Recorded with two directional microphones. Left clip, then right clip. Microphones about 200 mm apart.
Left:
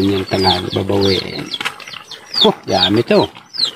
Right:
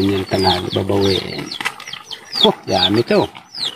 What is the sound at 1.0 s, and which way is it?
Speech, 20° right (ahead or behind).